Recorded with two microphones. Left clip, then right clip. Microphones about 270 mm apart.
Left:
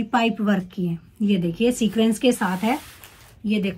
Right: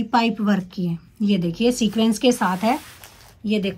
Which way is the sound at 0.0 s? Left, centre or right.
Centre.